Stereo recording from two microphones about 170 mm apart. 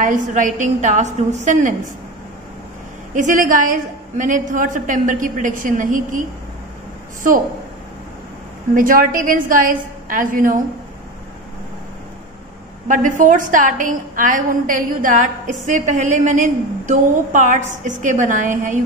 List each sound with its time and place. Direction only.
0.0 s a woman's voice: 50° right (ahead or behind)
3.2 s a woman's voice: 50° right (ahead or behind)
8.7 s a woman's voice: 55° right (ahead or behind)
12.8 s a woman's voice: 50° right (ahead or behind)